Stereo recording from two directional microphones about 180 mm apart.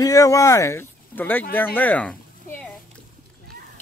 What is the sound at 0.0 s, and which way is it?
Speech, 20° left (ahead or behind).